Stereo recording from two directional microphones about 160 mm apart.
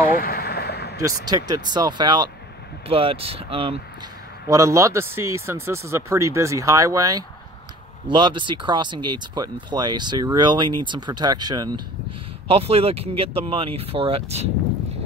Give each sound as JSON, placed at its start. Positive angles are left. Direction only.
{"t": 0.1, "sound": "a sound", "side_deg": 70}
{"t": 1.2, "sound": "speech", "side_deg": -25}
{"t": 4.5, "sound": "speech", "side_deg": -20}
{"t": 12.4, "sound": "speech", "side_deg": -35}